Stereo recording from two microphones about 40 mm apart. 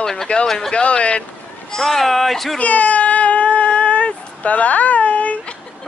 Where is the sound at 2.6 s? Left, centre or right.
Left.